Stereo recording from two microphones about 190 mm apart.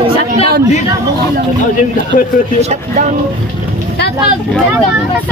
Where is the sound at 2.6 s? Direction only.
40° right (ahead or behind).